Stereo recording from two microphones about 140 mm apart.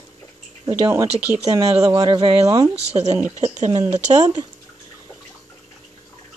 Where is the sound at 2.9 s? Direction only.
55° right (ahead or behind).